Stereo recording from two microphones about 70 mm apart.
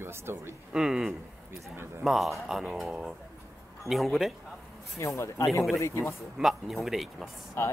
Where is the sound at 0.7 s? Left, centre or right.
Centre.